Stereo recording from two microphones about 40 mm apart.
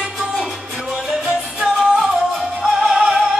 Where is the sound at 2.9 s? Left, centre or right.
Centre.